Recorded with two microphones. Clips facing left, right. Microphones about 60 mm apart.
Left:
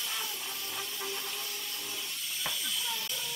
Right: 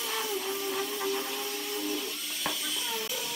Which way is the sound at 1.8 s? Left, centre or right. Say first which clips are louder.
Right 8 dB; centre.